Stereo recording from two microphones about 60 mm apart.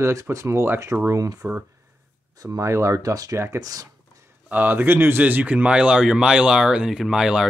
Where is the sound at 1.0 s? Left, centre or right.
Right.